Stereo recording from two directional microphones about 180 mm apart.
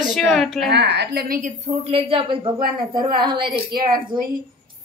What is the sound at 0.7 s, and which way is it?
A woman's voice, 70° right (ahead or behind).